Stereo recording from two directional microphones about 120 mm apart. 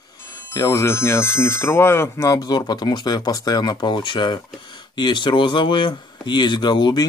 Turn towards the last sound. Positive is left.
turn(degrees=40)  # may be behind; listen again after turning